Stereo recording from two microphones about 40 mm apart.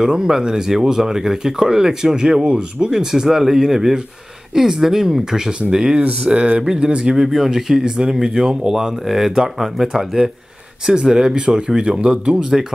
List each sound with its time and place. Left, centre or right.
0.0 s speech: centre
6.0 s speech: right
6.6 s speech: centre
7.2 s speech: centre; by 12.4 s right